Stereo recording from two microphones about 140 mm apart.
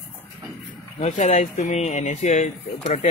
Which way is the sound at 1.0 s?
55° left (ahead or behind).